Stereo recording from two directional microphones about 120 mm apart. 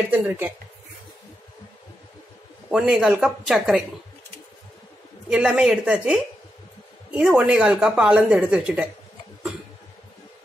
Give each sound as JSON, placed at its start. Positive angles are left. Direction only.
{"t": 0.1, "sound": "speech", "side_deg": -15}
{"t": 2.7, "sound": "speech", "side_deg": -5}
{"t": 5.3, "sound": "speech", "side_deg": -5}